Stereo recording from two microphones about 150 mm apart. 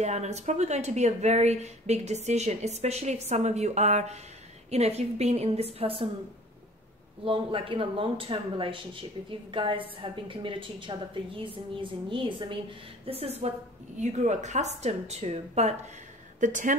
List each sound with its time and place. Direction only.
0.0 s speech: 50° right (ahead or behind)
7.2 s a woman's voice: 35° right (ahead or behind)
16.3 s a woman's voice: 55° right (ahead or behind)